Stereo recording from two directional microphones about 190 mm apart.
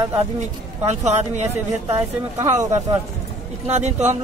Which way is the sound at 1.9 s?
15° right (ahead or behind).